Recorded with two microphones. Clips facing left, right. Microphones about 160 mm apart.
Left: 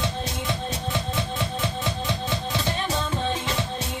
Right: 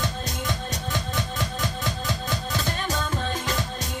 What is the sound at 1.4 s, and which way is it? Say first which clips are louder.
Music: left 2 dB; 40° right (ahead or behind).